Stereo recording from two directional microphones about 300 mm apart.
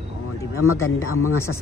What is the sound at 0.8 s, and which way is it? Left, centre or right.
Speech, left.